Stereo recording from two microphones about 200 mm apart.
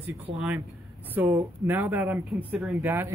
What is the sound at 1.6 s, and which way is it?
Speech, 10° right (ahead or behind).